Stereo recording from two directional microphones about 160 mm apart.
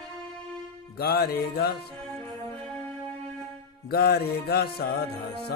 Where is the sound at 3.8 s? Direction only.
75° left (ahead or behind).